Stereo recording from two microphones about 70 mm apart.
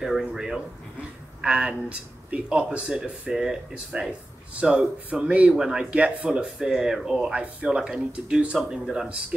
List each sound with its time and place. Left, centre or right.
0.0 s speech: centre